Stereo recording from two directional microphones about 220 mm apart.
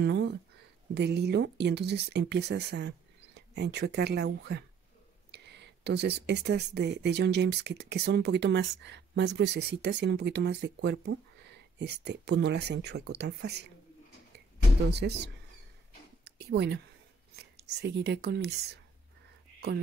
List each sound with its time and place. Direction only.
0.0 s a sound: 50° right (ahead or behind)
0.9 s speech: 50° right (ahead or behind)
14.9 s speech: 50° right (ahead or behind)
16.3 s speech: 50° right (ahead or behind)